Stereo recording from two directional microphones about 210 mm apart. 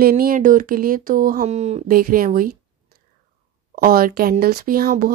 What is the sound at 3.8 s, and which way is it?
Speech, 45° right (ahead or behind).